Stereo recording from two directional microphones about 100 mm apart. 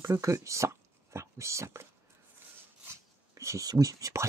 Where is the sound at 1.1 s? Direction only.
30° right (ahead or behind).